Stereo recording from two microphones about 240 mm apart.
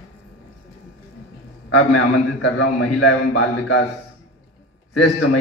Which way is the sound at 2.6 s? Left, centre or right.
Left.